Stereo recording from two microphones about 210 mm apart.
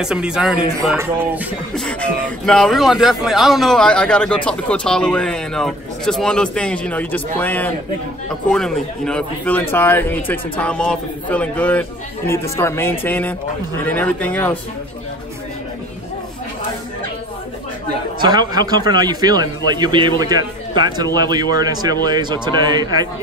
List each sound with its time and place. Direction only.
0.0 s speech: 5° right (ahead or behind)
1.8 s a man's voice: 5° left (ahead or behind)
18.2 s a man's voice: 20° right (ahead or behind)